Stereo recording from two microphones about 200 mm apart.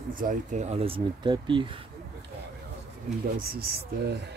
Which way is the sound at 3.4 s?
50° right (ahead or behind).